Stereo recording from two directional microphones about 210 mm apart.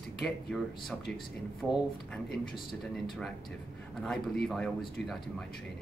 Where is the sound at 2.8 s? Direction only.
Centre (ahead or behind).